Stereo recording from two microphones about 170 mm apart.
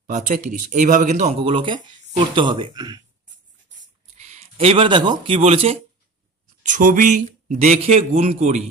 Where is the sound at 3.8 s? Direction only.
40° right (ahead or behind).